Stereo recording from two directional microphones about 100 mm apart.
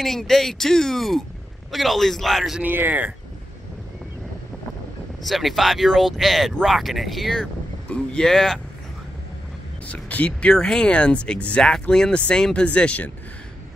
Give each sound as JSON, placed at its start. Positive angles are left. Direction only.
{"t": 0.0, "sound": "speech", "side_deg": 5}
{"t": 2.6, "sound": "speech", "side_deg": -20}
{"t": 5.2, "sound": "speech", "side_deg": 0}
{"t": 9.8, "sound": "speech", "side_deg": 15}